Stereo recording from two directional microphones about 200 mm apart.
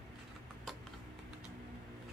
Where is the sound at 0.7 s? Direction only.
Centre (ahead or behind).